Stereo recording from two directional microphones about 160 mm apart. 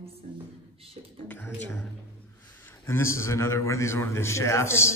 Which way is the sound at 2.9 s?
15° left (ahead or behind).